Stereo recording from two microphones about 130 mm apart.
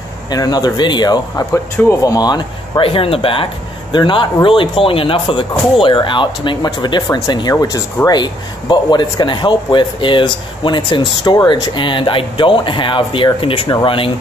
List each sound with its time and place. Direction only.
0.3 s speech: 30° left (ahead or behind)
1.5 s speech: 20° left (ahead or behind); by 14.1 s 40° left (ahead or behind)